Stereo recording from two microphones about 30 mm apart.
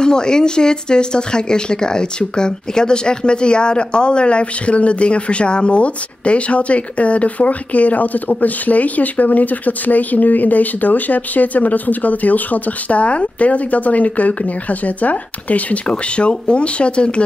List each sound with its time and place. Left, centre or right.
0.0 s speech: left
16.2 s speech: left